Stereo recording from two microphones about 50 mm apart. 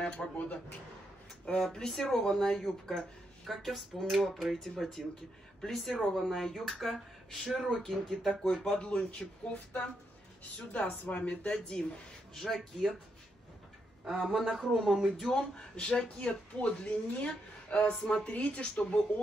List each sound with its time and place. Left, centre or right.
0.0 s speech: left
1.6 s speech: centre
8.6 s speech: left
12.4 s speech: centre
14.1 s speech: centre
15.7 s speech: left